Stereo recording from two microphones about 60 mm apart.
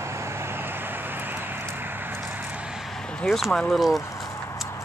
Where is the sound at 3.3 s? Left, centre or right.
Centre.